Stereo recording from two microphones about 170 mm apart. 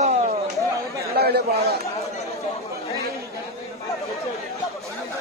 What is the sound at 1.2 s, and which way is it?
Speech, 65° right (ahead or behind).